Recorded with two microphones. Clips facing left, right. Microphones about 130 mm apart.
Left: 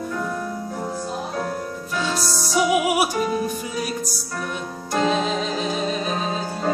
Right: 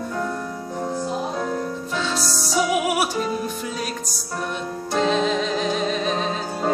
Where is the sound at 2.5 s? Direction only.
5° left (ahead or behind).